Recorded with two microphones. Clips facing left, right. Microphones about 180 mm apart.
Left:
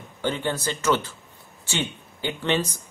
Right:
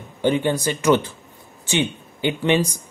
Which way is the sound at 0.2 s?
15° right (ahead or behind).